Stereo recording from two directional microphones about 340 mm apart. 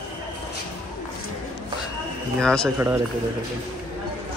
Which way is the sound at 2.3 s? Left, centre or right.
Centre.